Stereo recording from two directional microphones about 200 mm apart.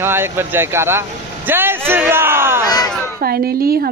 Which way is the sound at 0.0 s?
10° right (ahead or behind).